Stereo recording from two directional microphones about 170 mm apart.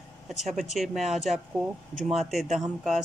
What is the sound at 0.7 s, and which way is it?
Speech, centre (ahead or behind).